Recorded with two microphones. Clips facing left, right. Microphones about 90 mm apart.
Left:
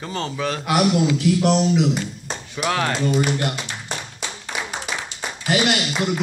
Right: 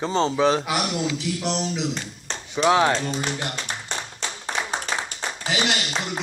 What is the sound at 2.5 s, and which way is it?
Speech, 20° right (ahead or behind).